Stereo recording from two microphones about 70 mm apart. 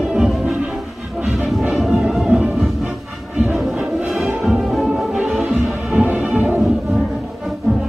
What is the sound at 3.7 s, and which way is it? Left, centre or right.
Music, centre.